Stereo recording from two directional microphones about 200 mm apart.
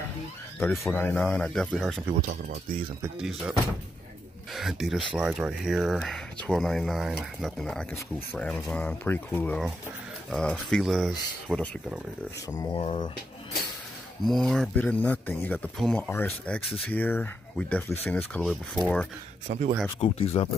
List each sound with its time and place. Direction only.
0.8 s speech: 10° left (ahead or behind)
2.2 s speech: 45° right (ahead or behind)
3.2 s speech: 5° right (ahead or behind)
4.6 s speech: centre (ahead or behind)
12.4 s speech: 15° left (ahead or behind)
14.2 s speech: centre (ahead or behind)
19.4 s speech: 35° right (ahead or behind)
20.0 s speech: 30° left (ahead or behind)